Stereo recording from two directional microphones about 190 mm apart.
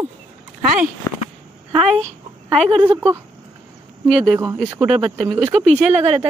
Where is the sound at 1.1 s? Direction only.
15° left (ahead or behind).